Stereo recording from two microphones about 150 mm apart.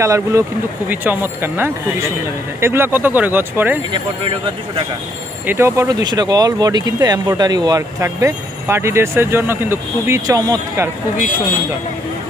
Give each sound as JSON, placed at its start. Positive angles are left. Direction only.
{"t": 0.0, "sound": "speech", "side_deg": -20}
{"t": 3.9, "sound": "speech", "side_deg": -35}
{"t": 5.5, "sound": "speech", "side_deg": -15}